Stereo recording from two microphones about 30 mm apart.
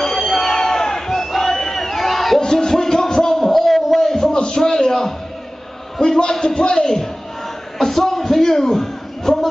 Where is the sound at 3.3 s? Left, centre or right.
Centre.